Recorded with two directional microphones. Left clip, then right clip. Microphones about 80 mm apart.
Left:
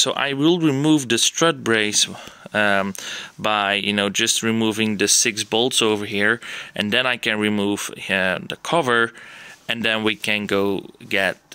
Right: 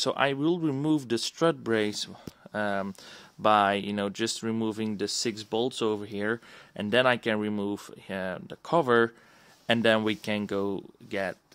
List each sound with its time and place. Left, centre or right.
0.0 s speech: centre; by 11.1 s right